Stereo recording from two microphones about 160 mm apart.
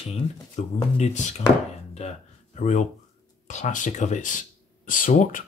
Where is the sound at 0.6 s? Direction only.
40° left (ahead or behind).